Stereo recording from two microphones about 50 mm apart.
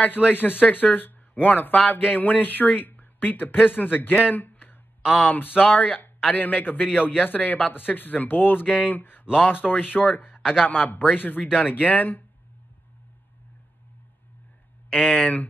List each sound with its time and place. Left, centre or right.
0.0 s speech: left
9.2 s speech: centre
9.5 s speech: left
15.0 s speech: left